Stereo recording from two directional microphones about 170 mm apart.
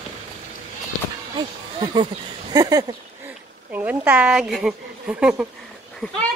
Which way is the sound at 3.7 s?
10° right (ahead or behind).